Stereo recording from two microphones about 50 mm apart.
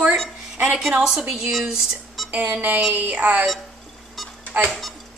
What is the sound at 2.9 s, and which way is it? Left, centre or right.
Speech, right.